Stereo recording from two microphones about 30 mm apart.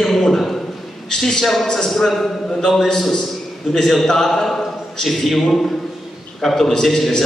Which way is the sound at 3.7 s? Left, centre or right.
Centre.